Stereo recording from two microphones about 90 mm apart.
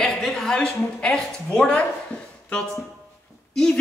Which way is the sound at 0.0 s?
5° left (ahead or behind).